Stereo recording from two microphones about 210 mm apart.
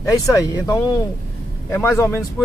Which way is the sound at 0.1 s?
15° left (ahead or behind).